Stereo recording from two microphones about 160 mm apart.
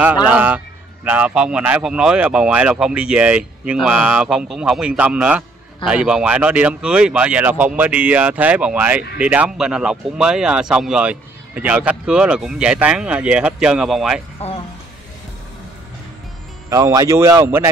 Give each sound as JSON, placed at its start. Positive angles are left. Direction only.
{"t": 0.3, "sound": "speech", "side_deg": -10}
{"t": 16.6, "sound": "a man's voice", "side_deg": -20}